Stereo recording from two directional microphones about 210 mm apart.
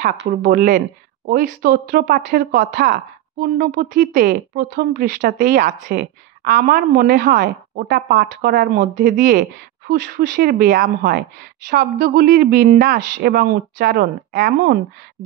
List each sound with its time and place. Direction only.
0.0 s speech: 40° right (ahead or behind)